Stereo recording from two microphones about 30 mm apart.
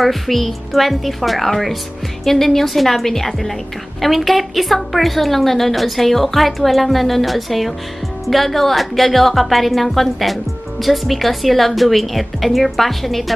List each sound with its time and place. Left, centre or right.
0.0 s a woman's voice: centre